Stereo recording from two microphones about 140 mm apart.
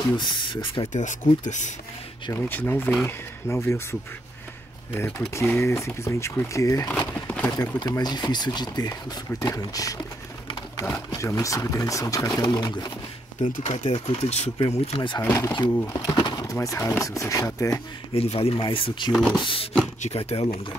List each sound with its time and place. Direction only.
0.2 s speech: 35° left (ahead or behind)
0.9 s speech: 60° left (ahead or behind)
2.3 s speech: 15° left (ahead or behind)
5.3 s speech: 20° left (ahead or behind)
6.9 s a sound: 15° left (ahead or behind)
7.5 s speech: 25° left (ahead or behind)
13.4 s speech: 60° left (ahead or behind)
13.8 s speech: 45° left (ahead or behind)
15.0 s speech: 30° left (ahead or behind)
15.5 s speech: 30° left (ahead or behind)
18.1 s speech: 45° left (ahead or behind)
19.1 s speech: 5° right (ahead or behind)
19.4 s speech: 40° left (ahead or behind)